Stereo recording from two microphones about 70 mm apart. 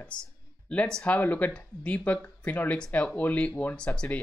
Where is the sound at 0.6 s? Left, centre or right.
Centre.